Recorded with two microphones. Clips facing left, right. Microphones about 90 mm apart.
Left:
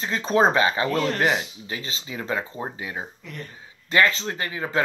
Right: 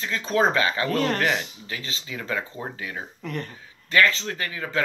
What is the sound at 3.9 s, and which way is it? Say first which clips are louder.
Speech: left 1 dB; 20° left (ahead or behind).